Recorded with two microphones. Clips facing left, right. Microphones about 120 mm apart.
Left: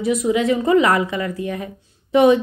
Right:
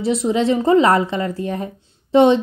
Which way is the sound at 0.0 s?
30° right (ahead or behind).